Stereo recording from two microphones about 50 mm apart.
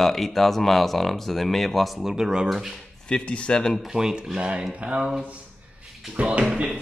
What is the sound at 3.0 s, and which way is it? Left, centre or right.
Speech, left.